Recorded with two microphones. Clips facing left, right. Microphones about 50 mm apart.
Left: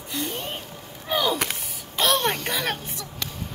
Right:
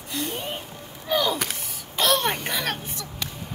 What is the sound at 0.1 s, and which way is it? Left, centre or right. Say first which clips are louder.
Gasp: even; centre.